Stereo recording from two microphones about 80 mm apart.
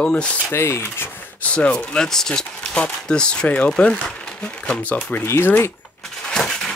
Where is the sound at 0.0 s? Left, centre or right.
Centre.